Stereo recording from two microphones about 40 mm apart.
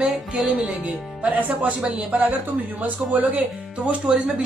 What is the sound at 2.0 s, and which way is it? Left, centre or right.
A man's voice, right.